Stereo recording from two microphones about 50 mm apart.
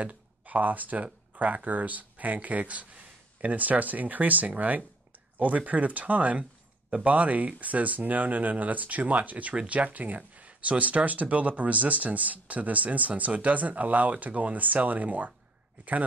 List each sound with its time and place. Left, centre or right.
0.0 s speech: right